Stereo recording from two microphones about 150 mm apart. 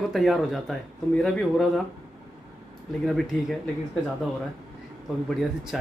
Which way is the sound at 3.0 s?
Centre (ahead or behind).